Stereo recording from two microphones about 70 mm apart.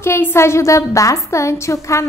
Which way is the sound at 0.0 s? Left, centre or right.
Left.